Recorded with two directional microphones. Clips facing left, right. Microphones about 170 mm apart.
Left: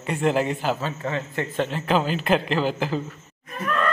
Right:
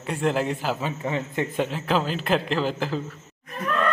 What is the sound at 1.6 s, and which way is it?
A man's voice, centre (ahead or behind).